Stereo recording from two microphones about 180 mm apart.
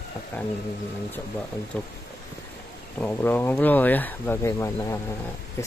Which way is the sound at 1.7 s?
10° left (ahead or behind).